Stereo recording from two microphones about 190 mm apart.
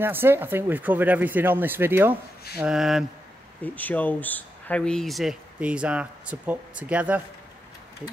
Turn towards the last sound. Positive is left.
turn(degrees=-5)  # may be behind; listen again after turning